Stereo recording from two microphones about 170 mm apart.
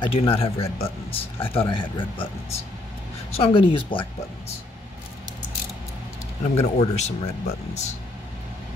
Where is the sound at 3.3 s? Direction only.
30° left (ahead or behind).